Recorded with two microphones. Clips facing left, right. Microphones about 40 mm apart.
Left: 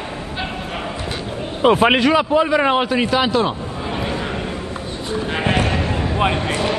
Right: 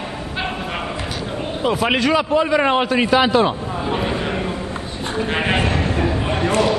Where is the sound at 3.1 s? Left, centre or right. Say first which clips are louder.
Right 4 dB; centre.